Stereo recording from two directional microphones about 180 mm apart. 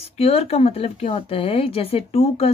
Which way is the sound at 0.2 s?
35° left (ahead or behind).